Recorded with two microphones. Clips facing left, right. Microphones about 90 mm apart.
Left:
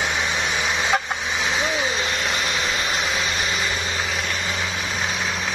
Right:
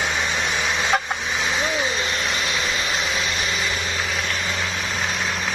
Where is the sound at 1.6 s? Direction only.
5° left (ahead or behind).